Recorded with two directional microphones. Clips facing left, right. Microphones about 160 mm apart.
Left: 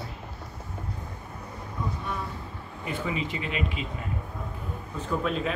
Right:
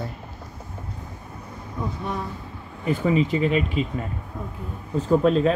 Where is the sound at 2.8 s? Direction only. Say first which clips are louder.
Right 10 dB; 40° right (ahead or behind).